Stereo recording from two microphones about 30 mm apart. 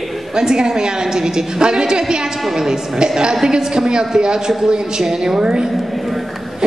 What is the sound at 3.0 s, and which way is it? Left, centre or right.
A woman's voice, right.